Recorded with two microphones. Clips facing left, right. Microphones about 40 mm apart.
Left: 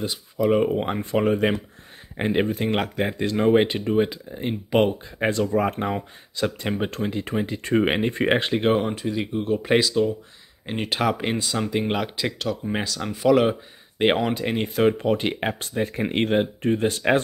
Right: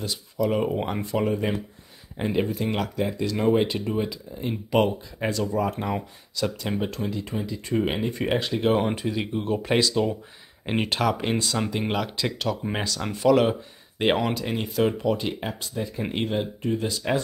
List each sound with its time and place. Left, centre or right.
0.0 s speech: centre
1.0 s speech: left
4.6 s speech: left
5.2 s speech: left
6.3 s speech: left
8.7 s speech: centre
10.6 s speech: centre
10.9 s speech: centre
14.4 s speech: left